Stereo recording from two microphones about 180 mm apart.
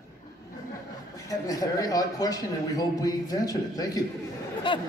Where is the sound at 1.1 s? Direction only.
20° left (ahead or behind).